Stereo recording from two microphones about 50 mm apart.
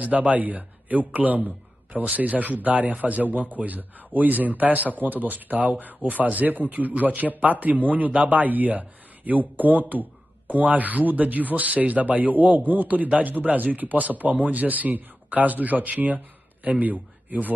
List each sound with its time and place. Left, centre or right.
0.0 s a man's voice: right